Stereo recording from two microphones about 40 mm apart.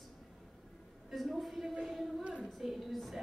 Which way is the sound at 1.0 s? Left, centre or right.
Centre.